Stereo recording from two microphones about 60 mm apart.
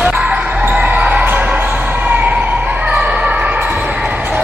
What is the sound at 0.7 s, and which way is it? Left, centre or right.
Basketball bounce, right.